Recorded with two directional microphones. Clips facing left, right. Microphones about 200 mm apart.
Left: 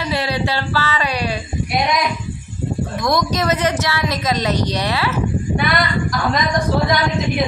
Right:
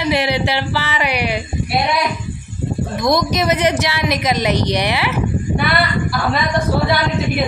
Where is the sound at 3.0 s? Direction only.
15° right (ahead or behind).